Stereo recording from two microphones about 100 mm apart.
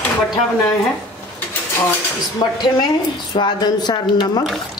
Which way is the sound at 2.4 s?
50° left (ahead or behind).